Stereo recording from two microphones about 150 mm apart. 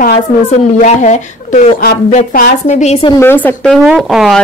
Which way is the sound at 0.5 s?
50° left (ahead or behind).